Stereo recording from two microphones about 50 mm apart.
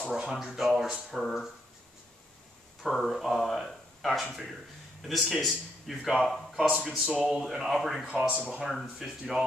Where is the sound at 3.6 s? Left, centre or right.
Centre.